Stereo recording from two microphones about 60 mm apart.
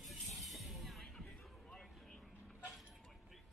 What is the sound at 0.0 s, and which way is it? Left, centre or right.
Music, centre.